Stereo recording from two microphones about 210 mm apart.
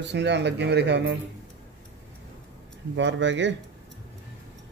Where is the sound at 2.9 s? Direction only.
60° right (ahead or behind).